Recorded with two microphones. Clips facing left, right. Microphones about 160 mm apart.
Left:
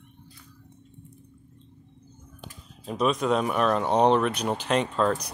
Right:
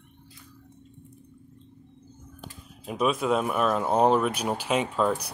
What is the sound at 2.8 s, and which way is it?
Speech, 5° right (ahead or behind).